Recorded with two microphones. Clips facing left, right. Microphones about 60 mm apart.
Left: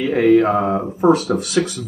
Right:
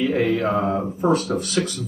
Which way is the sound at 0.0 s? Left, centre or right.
Left.